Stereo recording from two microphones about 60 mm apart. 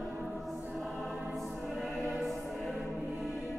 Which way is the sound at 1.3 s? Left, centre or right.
Centre.